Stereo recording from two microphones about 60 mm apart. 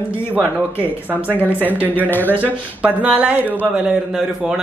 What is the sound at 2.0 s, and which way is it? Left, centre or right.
Speech, left.